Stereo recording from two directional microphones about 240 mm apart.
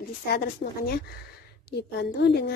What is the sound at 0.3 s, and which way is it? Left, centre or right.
A woman's voice, left.